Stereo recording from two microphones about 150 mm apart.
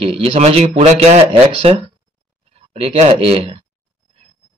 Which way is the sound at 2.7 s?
40° right (ahead or behind).